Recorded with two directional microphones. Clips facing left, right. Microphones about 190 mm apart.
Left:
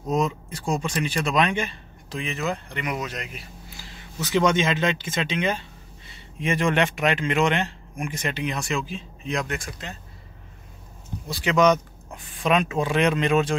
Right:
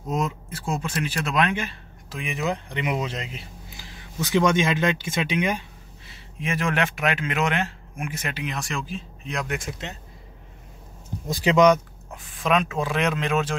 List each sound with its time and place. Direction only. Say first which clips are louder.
0.1 s speech: left 3 dB; 5° right (ahead or behind)
9.6 s speech: right 3 dB; 20° right (ahead or behind)
11.5 s speech: right 2 dB; 15° right (ahead or behind)
12.1 s speech: left 1 dB; centre (ahead or behind)